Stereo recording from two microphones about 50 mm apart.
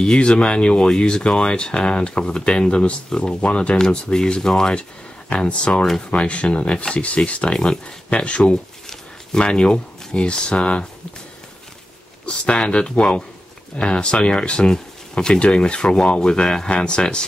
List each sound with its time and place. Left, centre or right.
0.0 s speech: centre
12.3 s speech: left